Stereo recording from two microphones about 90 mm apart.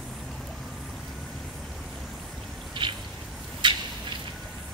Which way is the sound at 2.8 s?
60° right (ahead or behind).